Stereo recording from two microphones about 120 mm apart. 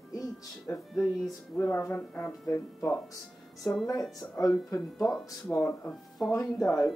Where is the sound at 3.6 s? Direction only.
Centre (ahead or behind).